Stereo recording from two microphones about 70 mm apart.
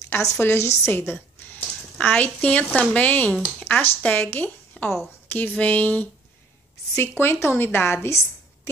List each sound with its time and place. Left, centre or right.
0.4 s a woman's voice: left
0.9 s a sound: left
2.0 s a woman's voice: left
7.0 s a woman's voice: left